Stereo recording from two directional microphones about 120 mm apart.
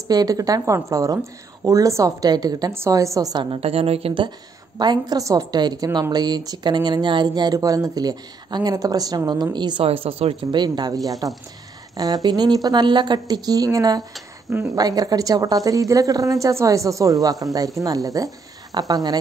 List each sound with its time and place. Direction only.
0.1 s speech: 30° right (ahead or behind)
2.7 s speech: 25° right (ahead or behind)
3.4 s a woman's voice: 50° right (ahead or behind)
4.7 s speech: 35° right (ahead or behind)
9.8 s a woman's voice: 55° right (ahead or behind)
10.5 s a woman's voice: 40° right (ahead or behind)